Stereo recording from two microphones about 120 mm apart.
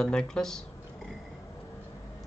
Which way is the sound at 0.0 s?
5° left (ahead or behind).